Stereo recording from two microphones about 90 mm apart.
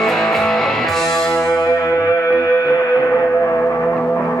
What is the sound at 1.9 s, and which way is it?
Music, 40° left (ahead or behind).